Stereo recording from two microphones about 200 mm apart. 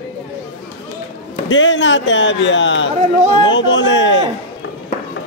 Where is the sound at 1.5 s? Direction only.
65° left (ahead or behind).